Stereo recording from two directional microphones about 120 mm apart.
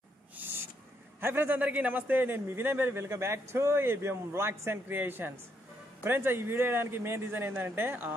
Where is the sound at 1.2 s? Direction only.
15° right (ahead or behind).